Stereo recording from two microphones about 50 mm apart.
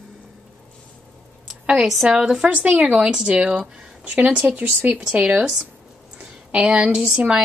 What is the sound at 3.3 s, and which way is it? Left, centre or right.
Speech, right.